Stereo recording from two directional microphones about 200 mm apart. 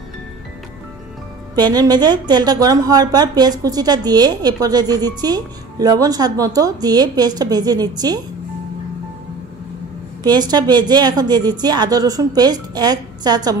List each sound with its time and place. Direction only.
1.5 s a woman's voice: 20° right (ahead or behind)
10.2 s a woman's voice: 20° right (ahead or behind)